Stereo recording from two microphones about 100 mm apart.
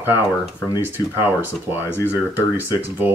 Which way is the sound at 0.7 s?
20° right (ahead or behind).